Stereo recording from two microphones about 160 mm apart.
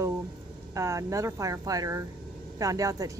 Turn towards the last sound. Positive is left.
turn(degrees=-20)  # may be behind; listen again after turning